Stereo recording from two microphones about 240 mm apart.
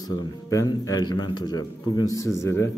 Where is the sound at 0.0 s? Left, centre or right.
Centre.